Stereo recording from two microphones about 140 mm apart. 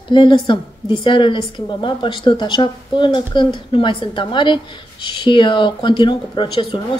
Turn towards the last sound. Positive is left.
turn(degrees=35)  # may be behind; listen again after turning